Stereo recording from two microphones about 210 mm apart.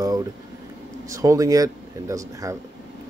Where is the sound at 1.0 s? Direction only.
15° right (ahead or behind).